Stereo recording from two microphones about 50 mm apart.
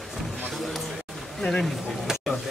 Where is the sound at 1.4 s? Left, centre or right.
Centre.